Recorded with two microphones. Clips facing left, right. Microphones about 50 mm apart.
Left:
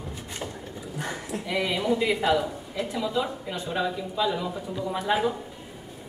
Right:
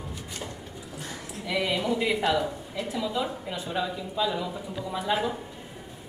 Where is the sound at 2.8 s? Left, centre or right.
Left.